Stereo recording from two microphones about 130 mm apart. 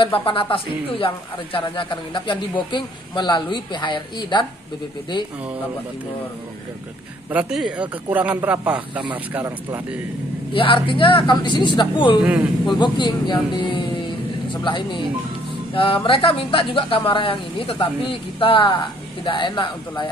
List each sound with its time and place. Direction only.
0.0 s a man's voice: 40° left (ahead or behind)
7.2 s speech: 10° right (ahead or behind)
10.5 s a man's voice: 40° left (ahead or behind)
12.2 s speech: 10° right (ahead or behind)
12.7 s a man's voice: 35° left (ahead or behind)